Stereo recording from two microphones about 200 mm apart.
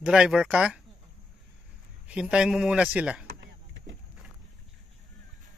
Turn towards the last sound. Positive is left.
turn(degrees=-65)  # may be behind; listen again after turning